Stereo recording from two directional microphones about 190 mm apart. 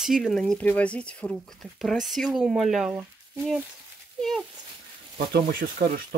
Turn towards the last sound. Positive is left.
turn(degrees=-50)  # may be behind; listen again after turning